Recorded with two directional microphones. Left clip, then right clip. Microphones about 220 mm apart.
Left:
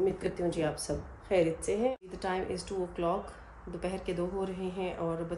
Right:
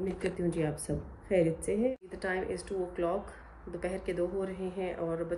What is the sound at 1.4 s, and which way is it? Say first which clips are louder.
Speech: even; 90° right.